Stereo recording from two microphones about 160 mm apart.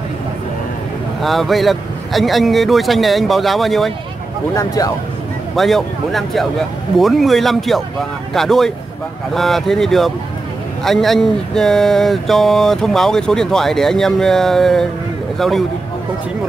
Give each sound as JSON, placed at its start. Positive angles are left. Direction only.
{"t": 1.2, "sound": "speech", "side_deg": 0}
{"t": 4.6, "sound": "speech", "side_deg": 20}
{"t": 5.6, "sound": "speech", "side_deg": 0}